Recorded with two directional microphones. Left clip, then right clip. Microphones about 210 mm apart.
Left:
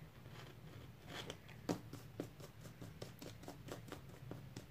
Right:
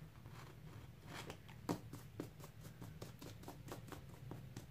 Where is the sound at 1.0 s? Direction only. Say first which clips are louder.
Left 2 dB; 5° left (ahead or behind).